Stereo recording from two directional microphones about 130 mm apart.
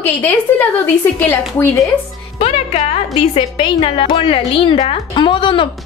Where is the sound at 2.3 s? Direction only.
50° left (ahead or behind).